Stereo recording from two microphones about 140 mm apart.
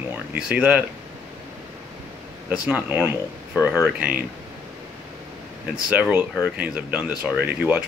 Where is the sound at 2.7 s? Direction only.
15° right (ahead or behind).